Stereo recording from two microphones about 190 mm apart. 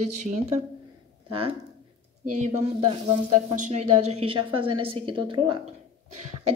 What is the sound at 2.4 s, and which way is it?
Speech, 35° right (ahead or behind).